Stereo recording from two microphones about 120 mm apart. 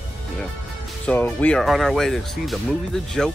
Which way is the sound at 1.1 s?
15° left (ahead or behind).